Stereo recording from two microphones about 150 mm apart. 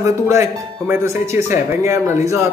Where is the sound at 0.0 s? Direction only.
20° right (ahead or behind).